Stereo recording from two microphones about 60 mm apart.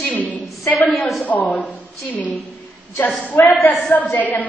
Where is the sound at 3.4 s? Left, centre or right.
Left.